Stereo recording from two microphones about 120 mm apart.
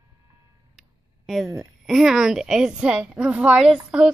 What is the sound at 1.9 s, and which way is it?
A woman's voice, 5° right (ahead or behind).